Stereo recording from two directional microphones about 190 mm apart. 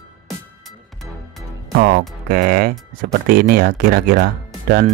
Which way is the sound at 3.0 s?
50° right (ahead or behind).